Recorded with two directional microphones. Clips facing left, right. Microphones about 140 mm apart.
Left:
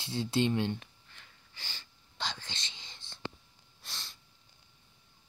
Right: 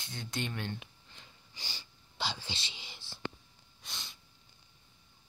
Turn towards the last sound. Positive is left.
turn(degrees=0)  # may be behind; listen again after turning